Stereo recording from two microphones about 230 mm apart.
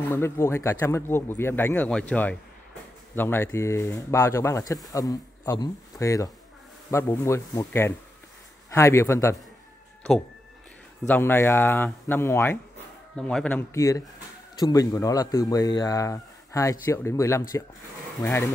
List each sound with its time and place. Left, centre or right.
0.1 s speech: centre
11.1 s speech: centre